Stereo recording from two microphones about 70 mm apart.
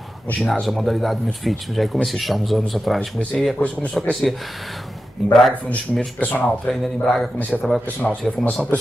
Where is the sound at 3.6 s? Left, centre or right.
Centre.